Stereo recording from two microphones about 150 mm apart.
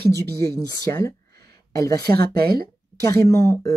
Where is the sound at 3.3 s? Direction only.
20° left (ahead or behind).